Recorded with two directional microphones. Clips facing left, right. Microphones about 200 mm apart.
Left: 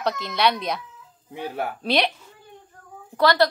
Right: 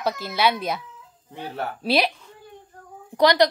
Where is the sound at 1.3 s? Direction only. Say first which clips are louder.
Left 2 dB; 10° left (ahead or behind).